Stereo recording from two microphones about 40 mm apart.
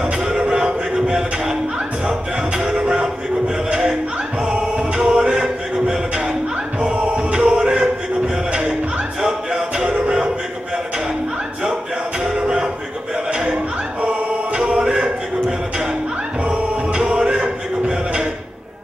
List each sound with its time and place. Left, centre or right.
0.4 s a sound: right
2.6 s music: right
4.5 s music: right
6.9 s choir: right
9.2 s music: right
12.4 s a sound: right
14.5 s music: right
16.4 s music: right